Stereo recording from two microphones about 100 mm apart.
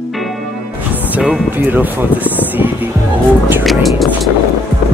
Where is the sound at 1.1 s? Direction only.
15° right (ahead or behind).